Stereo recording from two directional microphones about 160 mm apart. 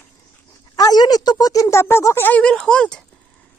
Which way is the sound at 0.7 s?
25° left (ahead or behind).